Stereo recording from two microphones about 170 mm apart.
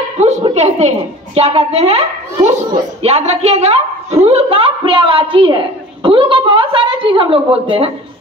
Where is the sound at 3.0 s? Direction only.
40° right (ahead or behind).